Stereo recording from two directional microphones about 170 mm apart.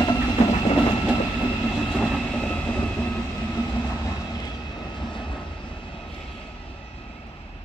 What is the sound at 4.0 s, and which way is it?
Train, 25° left (ahead or behind).